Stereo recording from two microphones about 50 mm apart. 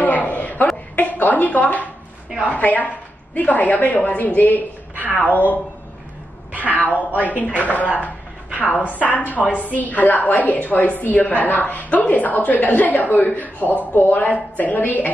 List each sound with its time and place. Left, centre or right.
0.0 s a sound: left
0.9 s a woman's voice: left
6.5 s speech: right
6.9 s a woman's voice: left